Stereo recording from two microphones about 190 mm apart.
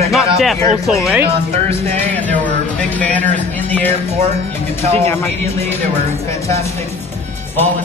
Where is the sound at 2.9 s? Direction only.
10° left (ahead or behind).